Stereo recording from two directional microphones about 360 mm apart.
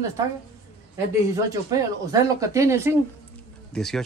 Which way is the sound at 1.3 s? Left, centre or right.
Centre.